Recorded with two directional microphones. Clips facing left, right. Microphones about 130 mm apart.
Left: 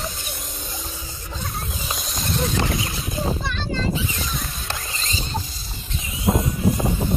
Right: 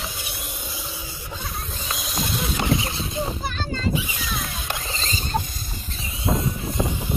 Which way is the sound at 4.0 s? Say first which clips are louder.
Left 1 dB; 15° right (ahead or behind).